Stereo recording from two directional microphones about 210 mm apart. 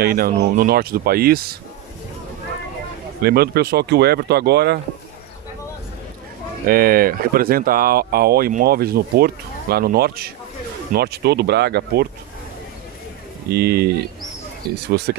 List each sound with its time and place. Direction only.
0.0 s speech: 45° right (ahead or behind)
3.2 s speech: 50° right (ahead or behind)
6.6 s speech: 45° right (ahead or behind)
13.5 s speech: 50° right (ahead or behind)